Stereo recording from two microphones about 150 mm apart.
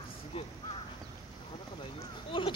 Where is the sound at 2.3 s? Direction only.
35° left (ahead or behind).